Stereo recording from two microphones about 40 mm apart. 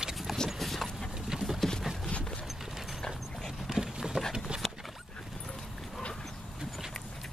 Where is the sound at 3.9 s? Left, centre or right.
Centre.